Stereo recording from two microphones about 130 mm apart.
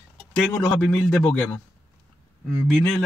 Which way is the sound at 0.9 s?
20° left (ahead or behind).